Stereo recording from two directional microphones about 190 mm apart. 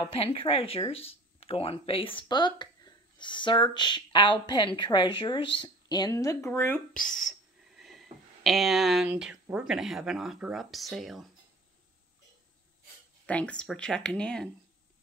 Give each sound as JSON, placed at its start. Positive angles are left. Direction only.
{"t": 0.1, "sound": "speech", "side_deg": 30}
{"t": 13.3, "sound": "speech", "side_deg": 5}